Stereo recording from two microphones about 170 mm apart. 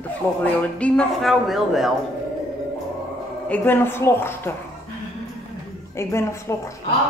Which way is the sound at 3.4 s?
10° left (ahead or behind).